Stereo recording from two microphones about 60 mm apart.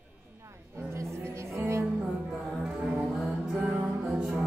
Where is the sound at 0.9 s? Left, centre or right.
Right.